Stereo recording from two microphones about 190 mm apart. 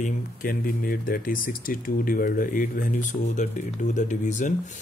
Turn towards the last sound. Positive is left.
turn(degrees=40)  # may be behind; listen again after turning